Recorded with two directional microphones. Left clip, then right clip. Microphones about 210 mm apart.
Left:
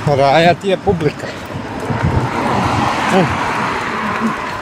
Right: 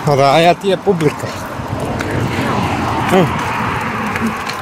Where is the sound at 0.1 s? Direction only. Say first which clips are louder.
Right 1 dB; 25° right (ahead or behind).